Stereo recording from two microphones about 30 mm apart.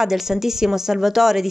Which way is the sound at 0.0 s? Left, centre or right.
Centre.